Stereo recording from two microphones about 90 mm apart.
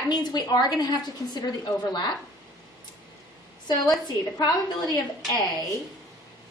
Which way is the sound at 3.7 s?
50° left (ahead or behind).